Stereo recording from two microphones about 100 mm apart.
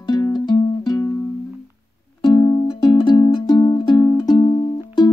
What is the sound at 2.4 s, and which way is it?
Music, 50° left (ahead or behind).